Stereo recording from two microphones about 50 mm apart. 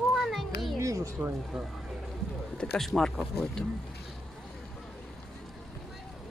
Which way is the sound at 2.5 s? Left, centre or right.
Centre.